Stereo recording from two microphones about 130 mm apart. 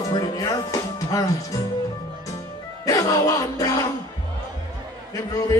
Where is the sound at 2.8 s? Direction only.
25° left (ahead or behind).